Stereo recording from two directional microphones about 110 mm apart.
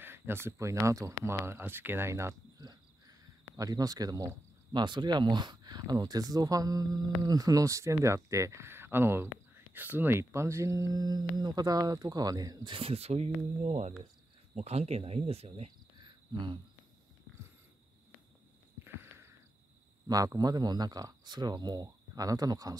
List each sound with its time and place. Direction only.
0.0 s speech: 20° right (ahead or behind)
2.6 s a sound: 35° right (ahead or behind)
4.7 s speech: 45° right (ahead or behind)
12.7 s speech: 65° right (ahead or behind); by 13.9 s 90° right
14.5 s speech: 70° right (ahead or behind)
16.1 s cricket: 45° right (ahead or behind)
18.9 s a sound: 25° right (ahead or behind)
20.1 s speech: 35° right (ahead or behind)